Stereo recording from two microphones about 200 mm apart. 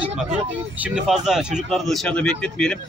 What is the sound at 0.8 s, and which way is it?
Speech, 5° right (ahead or behind).